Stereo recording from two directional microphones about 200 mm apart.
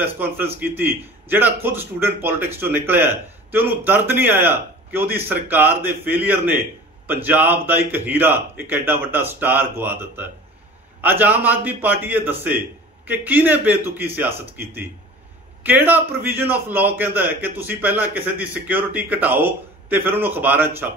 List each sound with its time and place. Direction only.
0.0 s a man's voice: 10° right (ahead or behind)
15.6 s a man's voice: 10° right (ahead or behind)